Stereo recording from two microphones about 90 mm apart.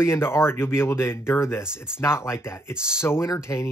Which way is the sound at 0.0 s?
30° left (ahead or behind).